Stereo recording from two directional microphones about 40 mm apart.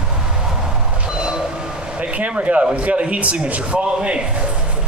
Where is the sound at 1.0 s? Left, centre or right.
Right.